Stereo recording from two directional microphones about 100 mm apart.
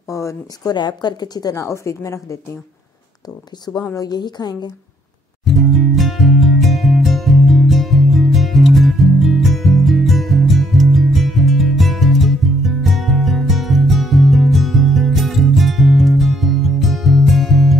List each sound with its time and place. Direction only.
0.1 s a woman's voice: 30° left (ahead or behind)
0.7 s a woman's voice: 45° left (ahead or behind)
3.9 s a woman's voice: 40° left (ahead or behind)
5.4 s music: centre (ahead or behind)